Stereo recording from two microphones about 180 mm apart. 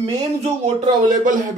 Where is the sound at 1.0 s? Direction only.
45° right (ahead or behind).